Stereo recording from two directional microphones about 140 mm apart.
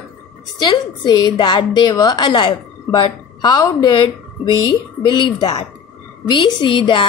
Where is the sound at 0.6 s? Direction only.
30° left (ahead or behind).